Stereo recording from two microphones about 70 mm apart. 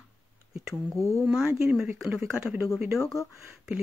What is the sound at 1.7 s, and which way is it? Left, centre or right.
Speech, centre.